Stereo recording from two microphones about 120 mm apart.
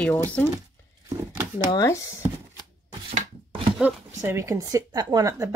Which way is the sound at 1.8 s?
25° left (ahead or behind).